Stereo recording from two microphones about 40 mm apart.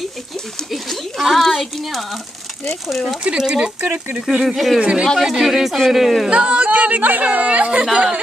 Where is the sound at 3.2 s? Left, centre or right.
Centre.